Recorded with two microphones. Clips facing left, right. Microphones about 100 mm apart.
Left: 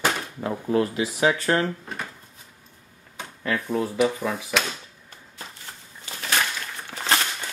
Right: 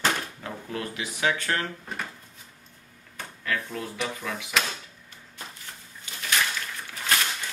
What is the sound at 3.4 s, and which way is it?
Speech, 25° left (ahead or behind).